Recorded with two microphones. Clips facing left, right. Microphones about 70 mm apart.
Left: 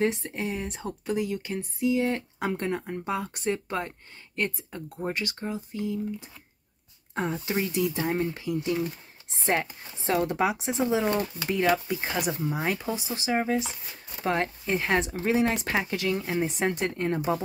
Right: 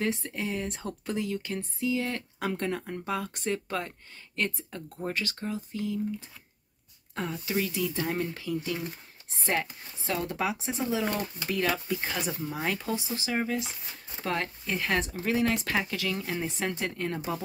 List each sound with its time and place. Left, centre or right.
0.0 s speech: left
4.9 s speech: centre
7.3 s speech: left